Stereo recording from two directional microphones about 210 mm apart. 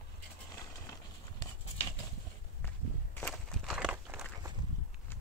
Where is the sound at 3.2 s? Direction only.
10° left (ahead or behind).